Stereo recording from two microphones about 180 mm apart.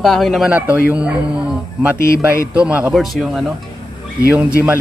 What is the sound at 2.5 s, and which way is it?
Speech, 5° right (ahead or behind).